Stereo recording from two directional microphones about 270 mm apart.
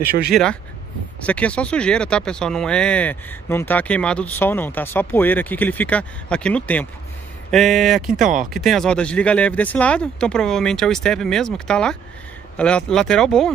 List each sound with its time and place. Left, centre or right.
0.3 s speech: centre